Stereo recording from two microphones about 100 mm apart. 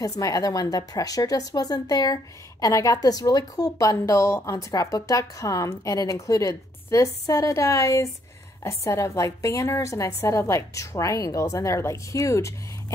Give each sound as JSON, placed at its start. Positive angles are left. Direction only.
{"t": 0.2, "sound": "a woman's voice", "side_deg": 35}